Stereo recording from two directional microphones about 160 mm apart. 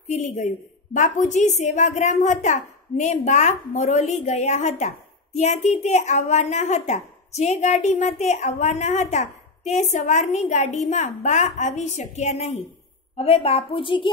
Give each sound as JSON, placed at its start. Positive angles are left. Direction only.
{"t": 0.1, "sound": "a woman's voice", "side_deg": 50}